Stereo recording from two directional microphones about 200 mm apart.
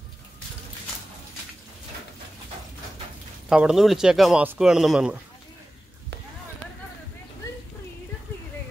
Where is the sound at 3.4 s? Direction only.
5° right (ahead or behind).